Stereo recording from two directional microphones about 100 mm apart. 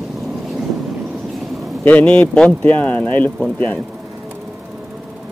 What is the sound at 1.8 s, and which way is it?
Speech, 15° left (ahead or behind).